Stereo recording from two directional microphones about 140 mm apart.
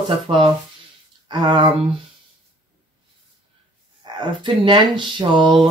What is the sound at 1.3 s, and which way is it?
Speech, 30° right (ahead or behind).